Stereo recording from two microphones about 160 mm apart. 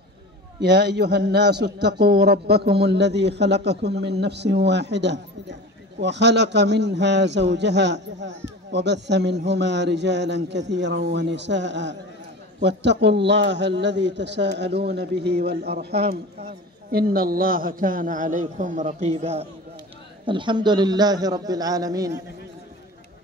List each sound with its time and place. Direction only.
0.6 s a man's voice: 90° right
16.9 s a man's voice: 65° right (ahead or behind); by 19.4 s 45° right (ahead or behind)
20.2 s a man's voice: 30° right (ahead or behind)